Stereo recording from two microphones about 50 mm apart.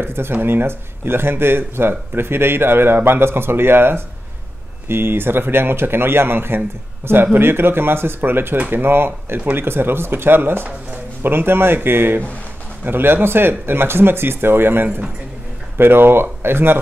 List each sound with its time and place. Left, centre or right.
0.0 s speech: right